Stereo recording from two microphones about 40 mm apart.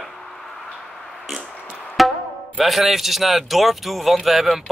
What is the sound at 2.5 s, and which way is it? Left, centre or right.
Speech, centre.